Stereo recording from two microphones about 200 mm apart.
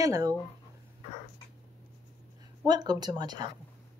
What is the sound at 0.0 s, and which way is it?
Speech, 15° right (ahead or behind).